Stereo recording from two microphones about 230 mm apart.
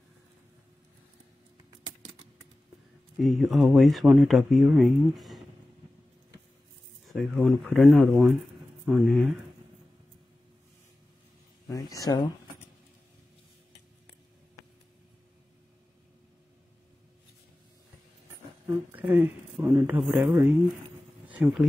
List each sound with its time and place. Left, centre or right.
3.2 s speech: centre
7.1 s speech: centre
11.6 s speech: centre
18.9 s a man's voice: centre